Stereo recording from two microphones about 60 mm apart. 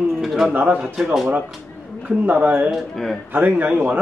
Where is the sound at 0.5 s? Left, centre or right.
Right.